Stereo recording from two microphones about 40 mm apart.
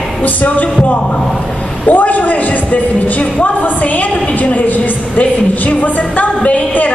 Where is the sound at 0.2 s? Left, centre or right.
Left.